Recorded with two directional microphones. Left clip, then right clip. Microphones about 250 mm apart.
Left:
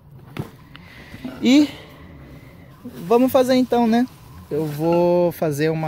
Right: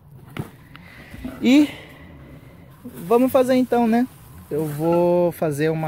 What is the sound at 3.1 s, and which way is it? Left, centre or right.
Speech, centre.